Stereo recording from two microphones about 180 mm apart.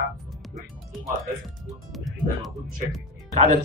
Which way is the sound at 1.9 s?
Centre (ahead or behind).